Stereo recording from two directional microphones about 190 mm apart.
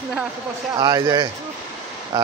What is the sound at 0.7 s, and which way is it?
Speech, 20° right (ahead or behind).